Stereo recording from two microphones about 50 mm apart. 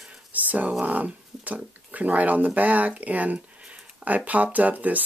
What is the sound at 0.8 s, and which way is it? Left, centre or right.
Speech, right.